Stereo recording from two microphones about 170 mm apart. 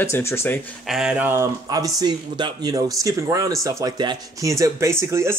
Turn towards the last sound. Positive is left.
turn(degrees=-15)  # may be behind; listen again after turning